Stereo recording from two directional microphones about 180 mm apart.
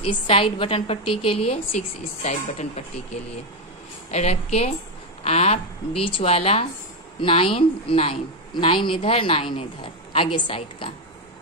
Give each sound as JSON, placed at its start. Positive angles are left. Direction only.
{"t": 0.0, "sound": "a woman's voice", "side_deg": 30}
{"t": 4.1, "sound": "a woman's voice", "side_deg": 40}